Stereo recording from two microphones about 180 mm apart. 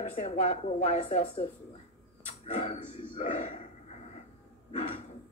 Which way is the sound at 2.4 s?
35° left (ahead or behind).